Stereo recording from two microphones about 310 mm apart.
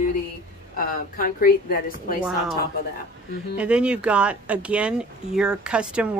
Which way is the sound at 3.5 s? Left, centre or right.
Centre.